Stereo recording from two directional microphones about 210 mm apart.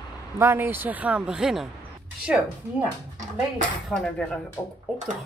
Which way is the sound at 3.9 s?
Centre (ahead or behind).